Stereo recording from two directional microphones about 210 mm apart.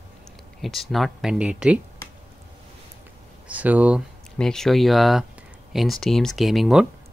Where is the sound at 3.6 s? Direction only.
5° right (ahead or behind).